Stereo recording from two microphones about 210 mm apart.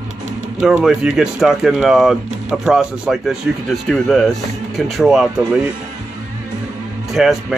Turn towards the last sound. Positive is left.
turn(degrees=0)  # may be behind; listen again after turning